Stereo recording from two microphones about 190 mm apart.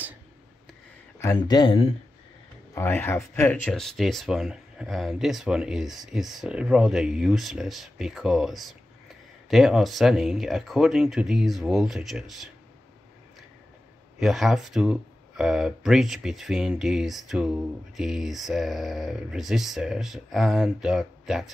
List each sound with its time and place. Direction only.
1.4 s speech: 25° left (ahead or behind)
2.7 s speech: 10° left (ahead or behind)
14.2 s speech: centre (ahead or behind)